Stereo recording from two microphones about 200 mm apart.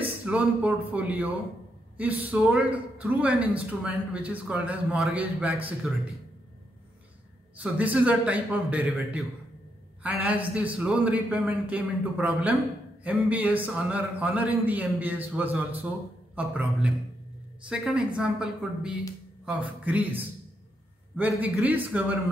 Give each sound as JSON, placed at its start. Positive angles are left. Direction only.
{"t": 0.2, "sound": "a woman's voice", "side_deg": -5}
{"t": 7.5, "sound": "a woman's voice", "side_deg": -10}
{"t": 21.2, "sound": "speech", "side_deg": -10}